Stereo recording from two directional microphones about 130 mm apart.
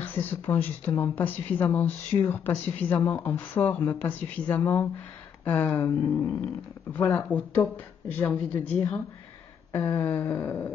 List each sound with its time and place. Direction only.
0.0 s speech: 15° left (ahead or behind)
6.9 s speech: 10° left (ahead or behind)